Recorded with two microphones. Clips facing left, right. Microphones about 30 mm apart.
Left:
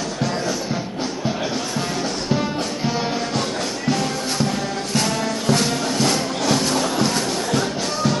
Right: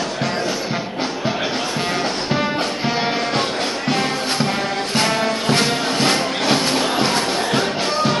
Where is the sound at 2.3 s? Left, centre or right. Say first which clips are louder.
Right 1 dB; right.